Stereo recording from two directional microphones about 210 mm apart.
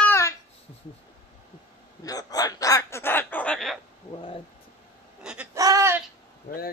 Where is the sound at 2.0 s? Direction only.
15° left (ahead or behind).